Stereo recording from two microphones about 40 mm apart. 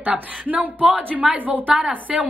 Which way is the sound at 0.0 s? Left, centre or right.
Right.